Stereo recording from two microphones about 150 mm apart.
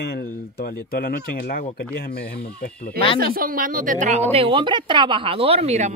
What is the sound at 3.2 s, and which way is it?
Speech, 80° right.